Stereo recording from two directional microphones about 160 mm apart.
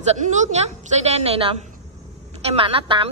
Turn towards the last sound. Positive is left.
turn(degrees=-35)  # may be behind; listen again after turning